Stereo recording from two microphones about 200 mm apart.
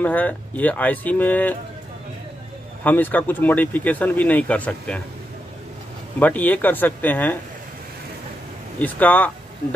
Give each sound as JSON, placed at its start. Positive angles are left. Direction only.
{"t": 0.0, "sound": "speech", "side_deg": 10}
{"t": 2.8, "sound": "speech", "side_deg": 10}
{"t": 6.1, "sound": "speech", "side_deg": 10}
{"t": 8.7, "sound": "speech", "side_deg": 10}